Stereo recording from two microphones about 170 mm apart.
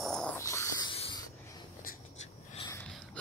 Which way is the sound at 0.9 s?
30° left (ahead or behind).